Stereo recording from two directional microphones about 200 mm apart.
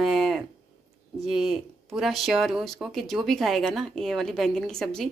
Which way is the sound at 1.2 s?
Centre (ahead or behind).